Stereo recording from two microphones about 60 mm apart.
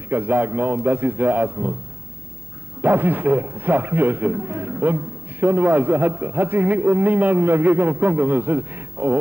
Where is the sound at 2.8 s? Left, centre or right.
Right.